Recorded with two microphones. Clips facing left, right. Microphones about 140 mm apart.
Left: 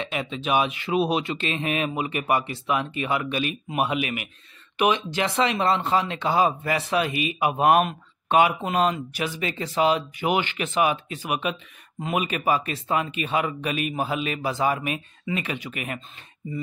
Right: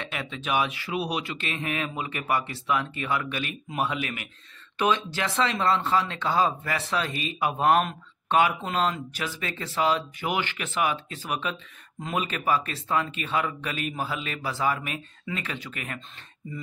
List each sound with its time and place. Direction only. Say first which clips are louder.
0.0 s speech: left 5 dB; 20° left (ahead or behind)